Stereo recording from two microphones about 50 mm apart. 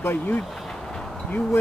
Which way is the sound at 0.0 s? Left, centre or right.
Left.